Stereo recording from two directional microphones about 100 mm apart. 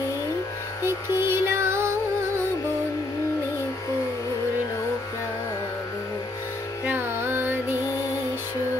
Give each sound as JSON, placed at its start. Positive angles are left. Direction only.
{"t": 0.8, "sound": "music", "side_deg": -25}
{"t": 6.9, "sound": "carnatic music", "side_deg": -20}